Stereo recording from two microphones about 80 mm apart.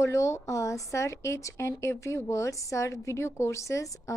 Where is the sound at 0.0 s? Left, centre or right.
Left.